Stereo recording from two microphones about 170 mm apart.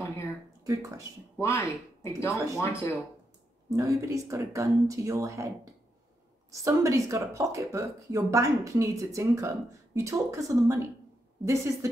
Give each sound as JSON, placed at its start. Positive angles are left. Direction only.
{"t": 0.0, "sound": "a sound", "side_deg": 15}
{"t": 0.7, "sound": "speech", "side_deg": -20}
{"t": 1.4, "sound": "speech", "side_deg": 15}
{"t": 3.7, "sound": "speech", "side_deg": -20}
{"t": 6.6, "sound": "speech", "side_deg": -20}